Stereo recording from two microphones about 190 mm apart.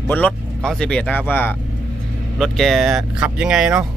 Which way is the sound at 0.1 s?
5° left (ahead or behind).